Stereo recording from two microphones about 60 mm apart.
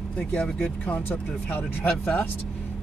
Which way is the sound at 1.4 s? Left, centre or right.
Left.